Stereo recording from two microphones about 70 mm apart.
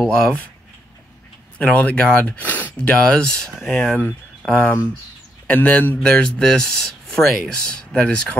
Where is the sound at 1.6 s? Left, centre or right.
Left.